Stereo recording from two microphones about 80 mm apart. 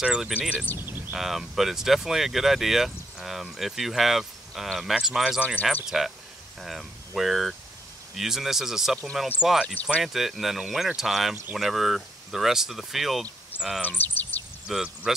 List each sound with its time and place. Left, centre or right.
0.0 s speech: centre
0.7 s speech: left
1.1 s speech: centre
13.8 s speech: left
14.7 s speech: centre